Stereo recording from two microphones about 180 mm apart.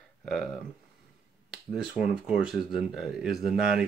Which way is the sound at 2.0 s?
5° right (ahead or behind).